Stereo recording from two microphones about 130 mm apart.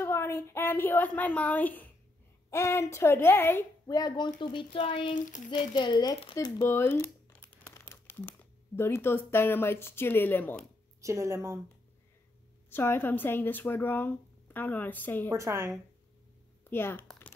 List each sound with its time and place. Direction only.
0.0 s a woman's voice: 20° left (ahead or behind)
3.8 s speech: 30° left (ahead or behind)
5.1 s speech: 75° left (ahead or behind)
5.8 s speech: 35° left (ahead or behind)
6.6 s speech: 15° left (ahead or behind)
11.0 s speech: 25° right (ahead or behind)
12.6 s speech: 15° left (ahead or behind)
15.2 s speech: 20° right (ahead or behind)
16.6 s speech: 15° left (ahead or behind)